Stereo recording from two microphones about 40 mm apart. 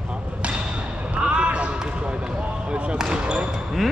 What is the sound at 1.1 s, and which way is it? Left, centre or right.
Basketball bounce, right.